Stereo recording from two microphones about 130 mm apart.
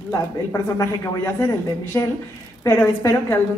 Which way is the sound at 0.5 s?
20° left (ahead or behind).